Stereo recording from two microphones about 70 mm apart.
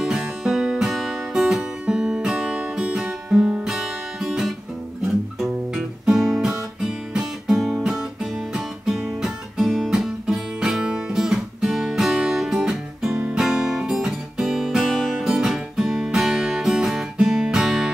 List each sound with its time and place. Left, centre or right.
0.0 s music: centre
6.0 s guitar: centre